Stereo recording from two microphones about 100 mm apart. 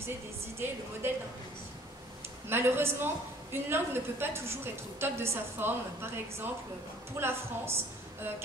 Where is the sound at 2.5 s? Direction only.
25° right (ahead or behind).